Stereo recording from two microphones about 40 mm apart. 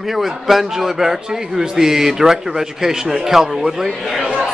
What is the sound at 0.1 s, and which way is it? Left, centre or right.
A man's voice, centre.